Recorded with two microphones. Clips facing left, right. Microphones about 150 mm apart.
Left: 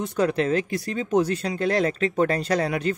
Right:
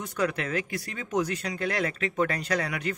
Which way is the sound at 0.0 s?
30° left (ahead or behind).